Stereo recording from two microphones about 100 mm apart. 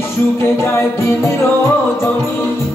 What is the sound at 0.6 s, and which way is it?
Music, 25° left (ahead or behind).